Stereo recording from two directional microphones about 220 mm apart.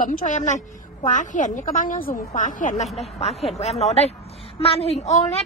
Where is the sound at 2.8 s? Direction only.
Centre (ahead or behind).